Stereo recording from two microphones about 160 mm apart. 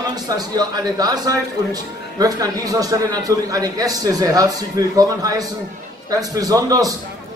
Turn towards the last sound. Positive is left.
turn(degrees=-25)  # may be behind; listen again after turning